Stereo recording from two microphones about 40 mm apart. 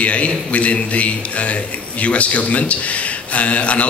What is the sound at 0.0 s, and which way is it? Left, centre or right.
Speech, left.